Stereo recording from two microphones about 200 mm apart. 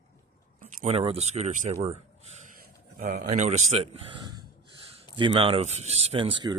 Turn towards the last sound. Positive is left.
turn(degrees=-25)  # may be behind; listen again after turning